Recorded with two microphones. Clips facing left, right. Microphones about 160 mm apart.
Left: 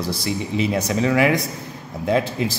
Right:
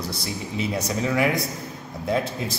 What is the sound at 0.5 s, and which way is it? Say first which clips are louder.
A man's voice: left 4 dB; 90° left.